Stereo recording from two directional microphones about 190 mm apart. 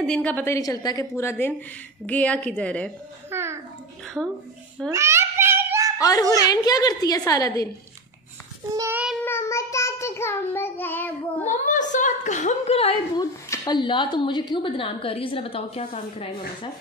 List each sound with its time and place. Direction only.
0.0 s a woman's voice: 5° left (ahead or behind)
3.3 s a sound: 15° right (ahead or behind)
4.9 s a sound: 15° right (ahead or behind)
5.9 s a child's voice: 20° left (ahead or behind)
8.7 s child singing: 15° right (ahead or behind)
9.2 s child singing: 15° left (ahead or behind)
11.4 s a woman's voice: 40° left (ahead or behind)
13.1 s a woman's voice: 20° left (ahead or behind)